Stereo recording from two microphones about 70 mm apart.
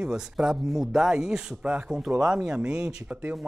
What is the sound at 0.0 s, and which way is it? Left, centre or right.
Speech, centre.